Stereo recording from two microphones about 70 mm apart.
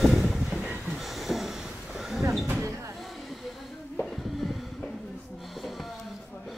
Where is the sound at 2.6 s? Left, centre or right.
Right.